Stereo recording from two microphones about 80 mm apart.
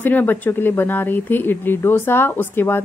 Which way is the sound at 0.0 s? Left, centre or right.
Left.